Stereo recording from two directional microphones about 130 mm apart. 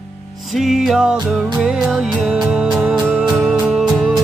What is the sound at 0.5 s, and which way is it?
Music, centre (ahead or behind).